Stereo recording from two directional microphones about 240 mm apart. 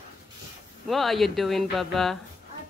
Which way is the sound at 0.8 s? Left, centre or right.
Centre.